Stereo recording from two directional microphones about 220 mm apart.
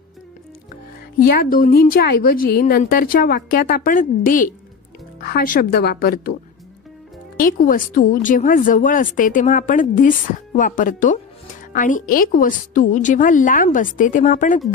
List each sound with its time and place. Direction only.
1.2 s a woman's voice: 45° left (ahead or behind)
7.3 s speech: 40° left (ahead or behind)